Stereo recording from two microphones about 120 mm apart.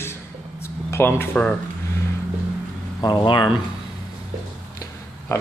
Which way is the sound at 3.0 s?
35° left (ahead or behind).